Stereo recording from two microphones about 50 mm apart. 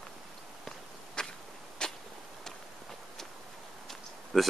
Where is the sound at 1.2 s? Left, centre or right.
Centre.